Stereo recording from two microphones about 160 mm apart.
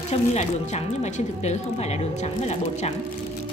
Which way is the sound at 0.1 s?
45° left (ahead or behind).